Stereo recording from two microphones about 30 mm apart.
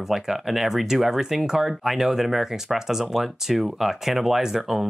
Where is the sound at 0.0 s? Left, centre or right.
Centre.